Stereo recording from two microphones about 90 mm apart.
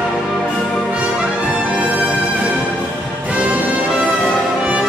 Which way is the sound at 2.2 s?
15° right (ahead or behind).